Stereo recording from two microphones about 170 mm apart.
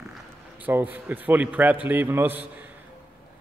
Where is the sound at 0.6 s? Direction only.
10° right (ahead or behind).